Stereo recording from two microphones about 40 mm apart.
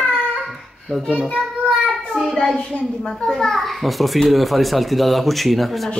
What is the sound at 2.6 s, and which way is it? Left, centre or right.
Speech, left.